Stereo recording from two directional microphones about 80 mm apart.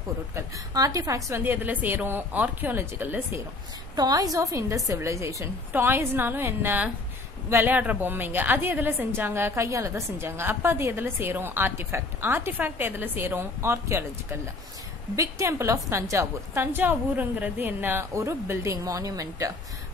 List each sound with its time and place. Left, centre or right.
0.7 s a woman's voice: right
1.4 s a woman's voice: right
3.9 s a woman's voice: right
5.7 s a woman's voice: right
7.7 s a woman's voice: right
10.2 s a woman's voice: right
16.7 s a woman's voice: right
18.1 s a woman's voice: right